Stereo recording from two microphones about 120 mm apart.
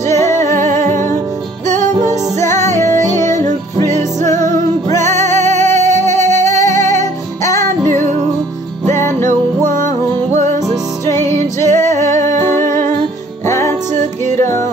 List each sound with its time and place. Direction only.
0.1 s music: 25° left (ahead or behind)
2.4 s music: 25° left (ahead or behind)
3.3 s music: 90° right
4.3 s music: 25° left (ahead or behind)
8.9 s music: 20° left (ahead or behind)
11.1 s music: 25° left (ahead or behind)
12.1 s music: 90° right
12.5 s music: 25° left (ahead or behind)